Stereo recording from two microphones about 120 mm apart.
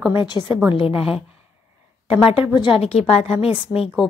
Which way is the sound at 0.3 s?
25° right (ahead or behind).